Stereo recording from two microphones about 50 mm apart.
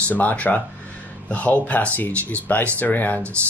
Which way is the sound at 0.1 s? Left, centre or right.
Left.